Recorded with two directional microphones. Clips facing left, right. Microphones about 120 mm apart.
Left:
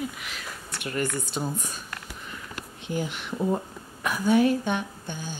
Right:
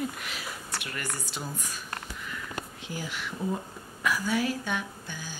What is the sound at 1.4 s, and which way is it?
Speech, 25° left (ahead or behind).